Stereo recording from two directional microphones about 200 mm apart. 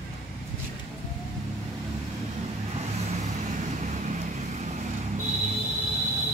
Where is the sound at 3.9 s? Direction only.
35° right (ahead or behind).